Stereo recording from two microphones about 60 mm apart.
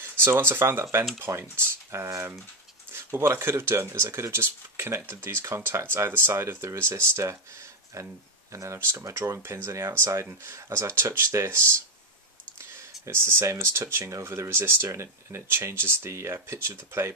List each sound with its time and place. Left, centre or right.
0.2 s speech: right
7.9 s speech: right